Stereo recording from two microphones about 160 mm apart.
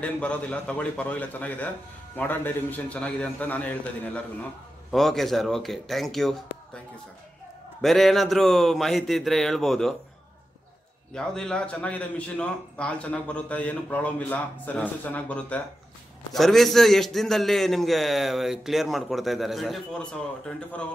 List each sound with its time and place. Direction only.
0.0 s a man's voice: 10° left (ahead or behind)
7.8 s a man's voice: centre (ahead or behind)
11.1 s a man's voice: 5° left (ahead or behind)